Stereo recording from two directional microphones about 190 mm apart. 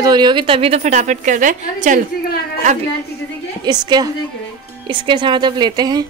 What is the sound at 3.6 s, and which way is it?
A woman's voice, 20° right (ahead or behind).